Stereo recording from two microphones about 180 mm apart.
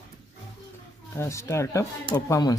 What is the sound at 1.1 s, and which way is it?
Speech, 15° left (ahead or behind).